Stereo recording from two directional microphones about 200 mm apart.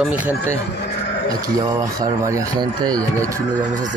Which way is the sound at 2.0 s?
20° right (ahead or behind).